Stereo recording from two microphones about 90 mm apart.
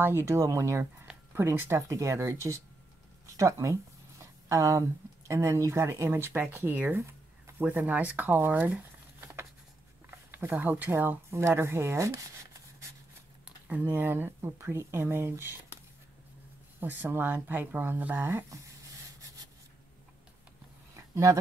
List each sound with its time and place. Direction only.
0.0 s speech: 25° right (ahead or behind)
7.0 s a sound: 30° right (ahead or behind)
10.9 s speech: 25° right (ahead or behind)
13.7 s speech: 20° right (ahead or behind)
16.8 s speech: 20° right (ahead or behind)
20.9 s a sound: 35° right (ahead or behind)